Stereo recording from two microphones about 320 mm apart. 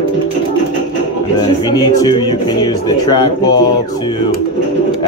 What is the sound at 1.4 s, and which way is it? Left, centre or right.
Speech, centre.